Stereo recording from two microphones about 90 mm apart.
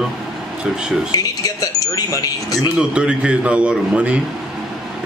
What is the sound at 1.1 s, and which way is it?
Speech, 40° left (ahead or behind).